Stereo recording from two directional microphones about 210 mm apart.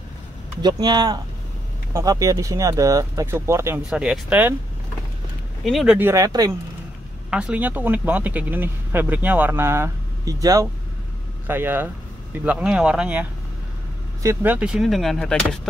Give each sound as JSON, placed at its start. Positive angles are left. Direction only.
{"t": 0.6, "sound": "speech", "side_deg": -20}
{"t": 5.6, "sound": "speech", "side_deg": 0}
{"t": 7.2, "sound": "speech", "side_deg": -5}